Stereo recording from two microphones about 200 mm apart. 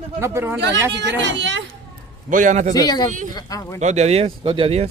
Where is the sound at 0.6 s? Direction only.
60° right (ahead or behind).